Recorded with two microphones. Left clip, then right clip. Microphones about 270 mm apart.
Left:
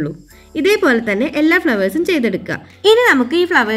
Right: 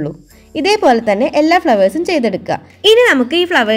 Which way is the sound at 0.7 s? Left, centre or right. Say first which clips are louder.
Right 3 dB; right.